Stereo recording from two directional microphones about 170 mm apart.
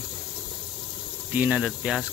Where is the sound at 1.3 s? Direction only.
10° right (ahead or behind).